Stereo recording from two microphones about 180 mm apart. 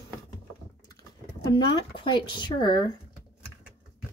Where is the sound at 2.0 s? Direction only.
25° left (ahead or behind).